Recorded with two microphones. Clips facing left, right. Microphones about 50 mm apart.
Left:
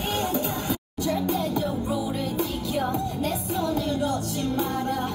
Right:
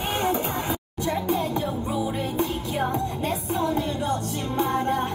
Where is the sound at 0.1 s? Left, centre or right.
Right.